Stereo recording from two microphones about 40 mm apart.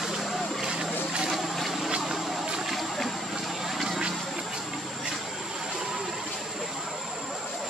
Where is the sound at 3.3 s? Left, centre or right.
Centre.